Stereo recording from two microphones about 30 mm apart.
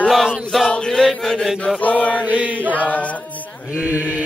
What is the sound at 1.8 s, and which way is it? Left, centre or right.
Mantra, left.